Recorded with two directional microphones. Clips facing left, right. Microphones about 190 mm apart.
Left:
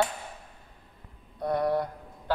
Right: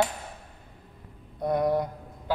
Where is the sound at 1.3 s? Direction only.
20° right (ahead or behind).